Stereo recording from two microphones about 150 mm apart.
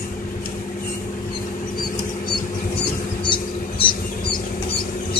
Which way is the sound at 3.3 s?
35° left (ahead or behind).